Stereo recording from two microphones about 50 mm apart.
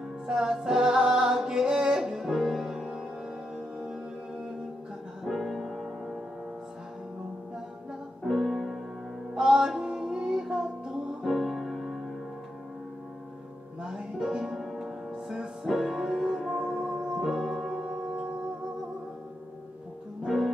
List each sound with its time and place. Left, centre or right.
0.3 s music: centre
5.2 s music: centre
8.2 s music: centre
9.3 s music: centre
11.2 s music: centre
13.8 s music: centre
20.2 s music: centre